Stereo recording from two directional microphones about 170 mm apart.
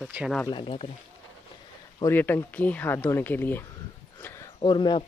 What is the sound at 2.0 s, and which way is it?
Speech, 10° left (ahead or behind).